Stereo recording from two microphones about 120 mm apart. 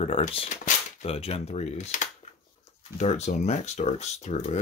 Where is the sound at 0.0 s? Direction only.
60° left (ahead or behind).